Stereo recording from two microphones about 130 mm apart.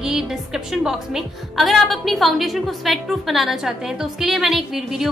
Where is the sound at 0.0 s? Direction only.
5° right (ahead or behind).